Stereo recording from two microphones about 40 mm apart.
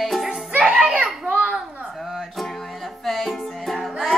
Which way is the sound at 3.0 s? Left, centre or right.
Centre.